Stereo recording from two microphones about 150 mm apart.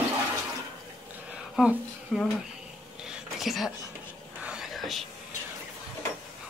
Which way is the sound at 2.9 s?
5° right (ahead or behind).